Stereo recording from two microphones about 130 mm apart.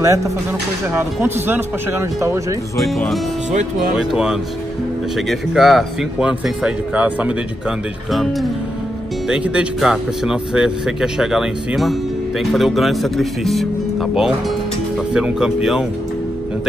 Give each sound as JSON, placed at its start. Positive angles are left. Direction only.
{"t": 0.0, "sound": "speech", "side_deg": -25}
{"t": 3.9, "sound": "speech", "side_deg": -5}
{"t": 15.1, "sound": "speech", "side_deg": -5}